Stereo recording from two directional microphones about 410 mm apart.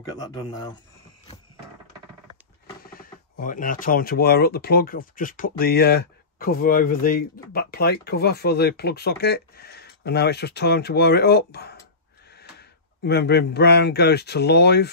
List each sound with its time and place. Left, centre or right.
0.2 s speech: centre
2.8 s speech: left